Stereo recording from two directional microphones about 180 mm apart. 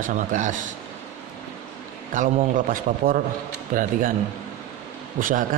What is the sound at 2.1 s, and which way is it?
Speech, 45° right (ahead or behind).